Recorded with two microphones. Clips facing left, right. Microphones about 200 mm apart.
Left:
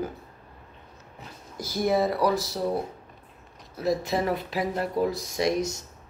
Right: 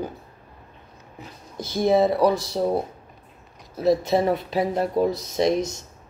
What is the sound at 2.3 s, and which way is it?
Speech, centre (ahead or behind).